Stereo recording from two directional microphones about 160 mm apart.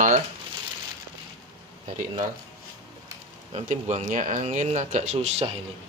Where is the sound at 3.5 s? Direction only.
45° right (ahead or behind).